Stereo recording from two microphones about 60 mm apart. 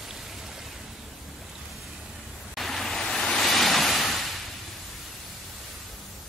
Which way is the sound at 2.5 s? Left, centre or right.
Centre.